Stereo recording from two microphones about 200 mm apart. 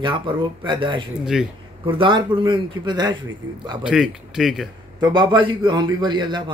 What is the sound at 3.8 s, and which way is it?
Speech, 5° right (ahead or behind).